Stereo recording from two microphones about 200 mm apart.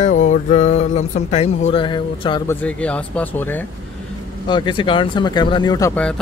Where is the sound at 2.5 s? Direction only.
5° left (ahead or behind).